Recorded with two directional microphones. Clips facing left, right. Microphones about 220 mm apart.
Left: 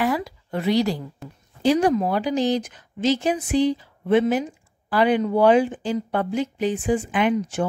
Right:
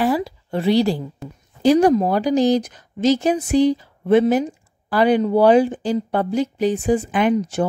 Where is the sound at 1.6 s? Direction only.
45° right (ahead or behind).